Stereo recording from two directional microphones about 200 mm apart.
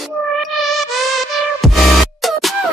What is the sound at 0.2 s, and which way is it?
Music, centre (ahead or behind).